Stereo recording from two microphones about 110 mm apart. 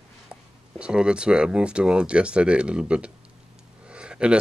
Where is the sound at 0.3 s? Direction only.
10° right (ahead or behind).